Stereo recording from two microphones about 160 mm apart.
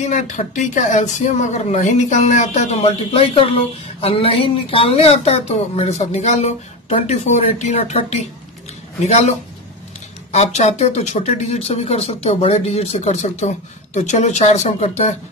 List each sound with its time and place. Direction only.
0.3 s speech: 50° left (ahead or behind)
10.3 s speech: 45° left (ahead or behind)